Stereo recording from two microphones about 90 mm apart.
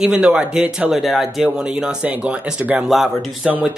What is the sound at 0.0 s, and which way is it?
Speech, 10° right (ahead or behind).